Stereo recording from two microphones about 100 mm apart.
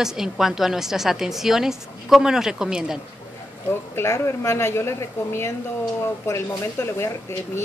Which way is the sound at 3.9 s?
25° left (ahead or behind).